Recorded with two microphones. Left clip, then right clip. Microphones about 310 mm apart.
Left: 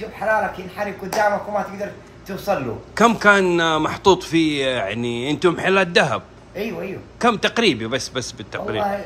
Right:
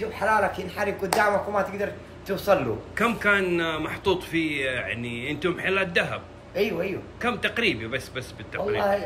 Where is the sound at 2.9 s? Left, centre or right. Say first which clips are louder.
Left 9 dB; centre.